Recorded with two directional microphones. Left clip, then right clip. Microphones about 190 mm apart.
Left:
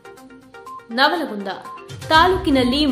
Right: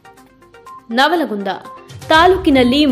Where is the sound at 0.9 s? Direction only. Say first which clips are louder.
Right 4 dB; 35° right (ahead or behind).